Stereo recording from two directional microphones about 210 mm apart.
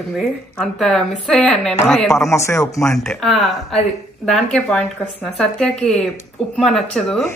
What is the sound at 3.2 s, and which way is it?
A woman's voice, centre (ahead or behind).